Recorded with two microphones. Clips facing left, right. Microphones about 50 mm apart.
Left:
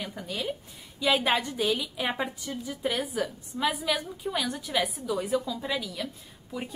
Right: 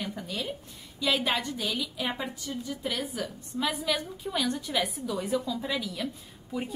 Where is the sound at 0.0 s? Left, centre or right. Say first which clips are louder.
Left 1 dB; centre.